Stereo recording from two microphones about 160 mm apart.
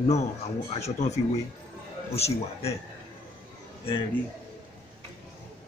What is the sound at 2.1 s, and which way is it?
Speech, 40° left (ahead or behind).